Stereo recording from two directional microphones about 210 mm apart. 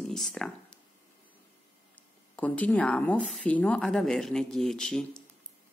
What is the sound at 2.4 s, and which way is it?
Speech, 5° left (ahead or behind).